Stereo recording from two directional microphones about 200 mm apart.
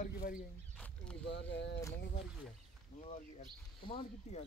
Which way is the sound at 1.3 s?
60° left (ahead or behind).